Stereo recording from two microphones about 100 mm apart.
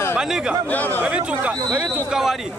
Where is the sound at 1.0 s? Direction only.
10° right (ahead or behind).